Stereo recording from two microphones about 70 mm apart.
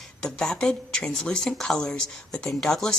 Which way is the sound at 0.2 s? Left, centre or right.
Centre.